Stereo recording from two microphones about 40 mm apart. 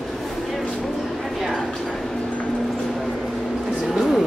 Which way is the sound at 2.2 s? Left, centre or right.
Left.